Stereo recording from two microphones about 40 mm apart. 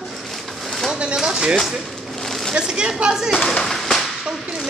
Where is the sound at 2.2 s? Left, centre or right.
Centre.